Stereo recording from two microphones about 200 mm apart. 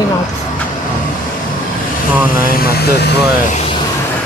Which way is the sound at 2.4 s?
50° left (ahead or behind).